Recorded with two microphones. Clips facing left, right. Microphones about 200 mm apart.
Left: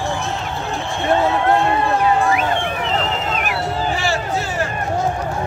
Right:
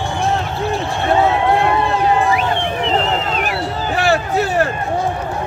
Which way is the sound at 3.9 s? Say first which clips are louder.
Right 5 dB; 60° right (ahead or behind).